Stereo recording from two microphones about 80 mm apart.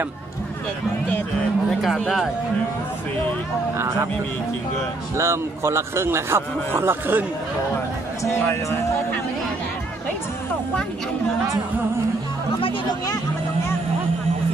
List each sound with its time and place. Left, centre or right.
1.7 s speech: centre
3.7 s a man's voice: right
5.1 s a man's voice: right
8.5 s speech: left